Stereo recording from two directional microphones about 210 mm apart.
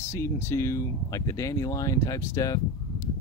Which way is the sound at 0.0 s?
10° left (ahead or behind).